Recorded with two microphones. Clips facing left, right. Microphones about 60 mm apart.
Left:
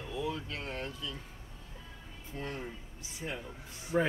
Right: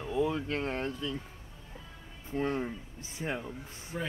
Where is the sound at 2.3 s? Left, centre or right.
Right.